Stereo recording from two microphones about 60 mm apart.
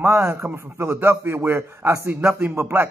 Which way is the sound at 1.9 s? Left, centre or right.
Right.